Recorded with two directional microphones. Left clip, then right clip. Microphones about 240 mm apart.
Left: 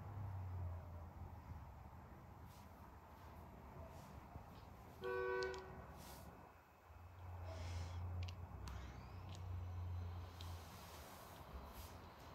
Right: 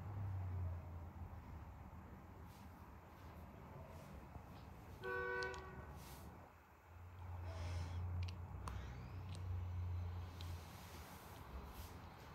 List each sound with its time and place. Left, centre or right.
5.0 s vehicle: left
5.4 s vehicle: centre
7.4 s a sound: centre